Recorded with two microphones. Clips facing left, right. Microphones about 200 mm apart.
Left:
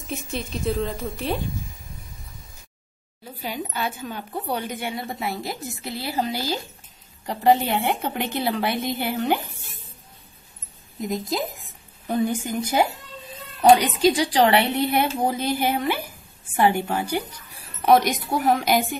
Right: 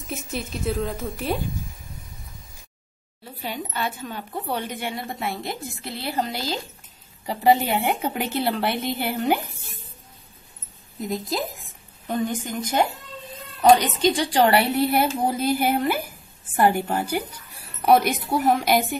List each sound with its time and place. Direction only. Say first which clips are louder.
0.5 s a woman's voice: left 1 dB; 5° right (ahead or behind)
3.4 s a woman's voice: even; 5° left (ahead or behind)
7.2 s a woman's voice: even; 10° right (ahead or behind)
11.1 s a sound: left 1 dB; centre (ahead or behind)
12.2 s a woman's voice: left 3 dB; 10° left (ahead or behind)